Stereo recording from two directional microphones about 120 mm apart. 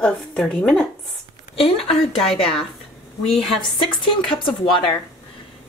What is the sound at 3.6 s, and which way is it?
Speech, 40° left (ahead or behind).